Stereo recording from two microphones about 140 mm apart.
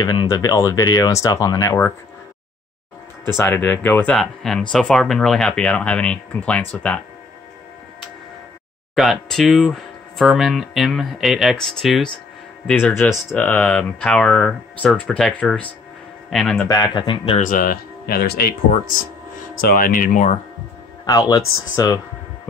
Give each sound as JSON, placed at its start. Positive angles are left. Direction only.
{"t": 0.0, "sound": "speech", "side_deg": 30}
{"t": 3.3, "sound": "speech", "side_deg": 15}
{"t": 8.9, "sound": "speech", "side_deg": 0}
{"t": 16.6, "sound": "speech", "side_deg": 30}
{"t": 17.4, "sound": "speech", "side_deg": 75}
{"t": 19.6, "sound": "speech", "side_deg": 85}
{"t": 21.0, "sound": "speech", "side_deg": 25}